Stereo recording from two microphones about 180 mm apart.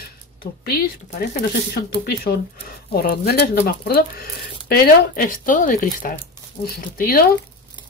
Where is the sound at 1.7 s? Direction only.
60° left (ahead or behind).